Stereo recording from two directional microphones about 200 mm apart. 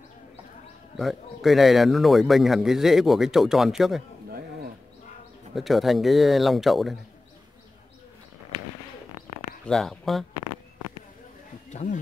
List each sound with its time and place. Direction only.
0.9 s speech: centre (ahead or behind)
5.5 s speech: centre (ahead or behind)
9.7 s speech: centre (ahead or behind)
11.7 s speech: 35° left (ahead or behind)